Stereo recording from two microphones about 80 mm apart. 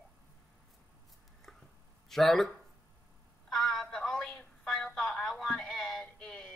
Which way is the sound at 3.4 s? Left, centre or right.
Centre.